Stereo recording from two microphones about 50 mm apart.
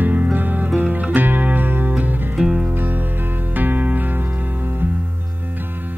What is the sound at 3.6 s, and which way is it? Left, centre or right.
Music, right.